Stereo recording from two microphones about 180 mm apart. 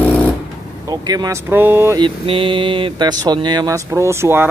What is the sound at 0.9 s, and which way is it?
Speech, 20° right (ahead or behind).